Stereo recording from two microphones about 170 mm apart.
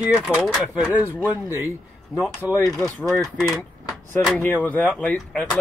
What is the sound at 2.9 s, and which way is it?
Speech, 5° left (ahead or behind).